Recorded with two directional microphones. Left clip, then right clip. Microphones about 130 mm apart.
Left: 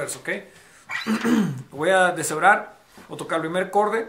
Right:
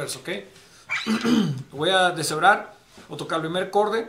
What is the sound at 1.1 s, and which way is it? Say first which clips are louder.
Speech: left 1 dB; 10° left (ahead or behind).